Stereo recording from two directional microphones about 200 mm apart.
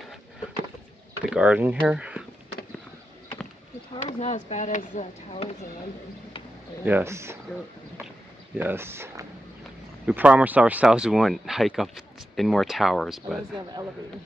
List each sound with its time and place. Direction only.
1.2 s speech: 5° right (ahead or behind)
3.9 s speech: 35° left (ahead or behind)
6.8 s speech: 10° right (ahead or behind)
8.5 s speech: 10° right (ahead or behind)